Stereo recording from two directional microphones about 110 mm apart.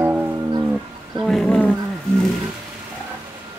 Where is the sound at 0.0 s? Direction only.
20° right (ahead or behind).